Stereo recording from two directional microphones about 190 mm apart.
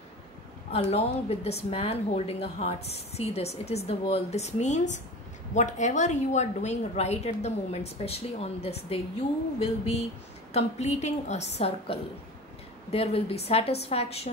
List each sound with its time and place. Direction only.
0.7 s a woman's voice: 30° left (ahead or behind)